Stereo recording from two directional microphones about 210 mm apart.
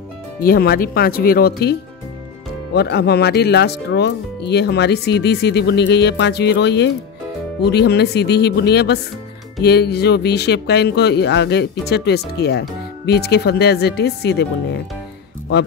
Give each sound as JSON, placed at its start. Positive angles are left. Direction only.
{"t": 0.4, "sound": "speech", "side_deg": 45}